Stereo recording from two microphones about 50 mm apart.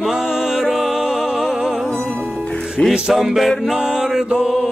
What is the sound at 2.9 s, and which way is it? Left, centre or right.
Music, centre.